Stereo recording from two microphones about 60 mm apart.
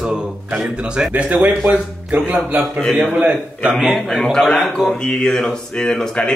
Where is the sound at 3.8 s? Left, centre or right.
Centre.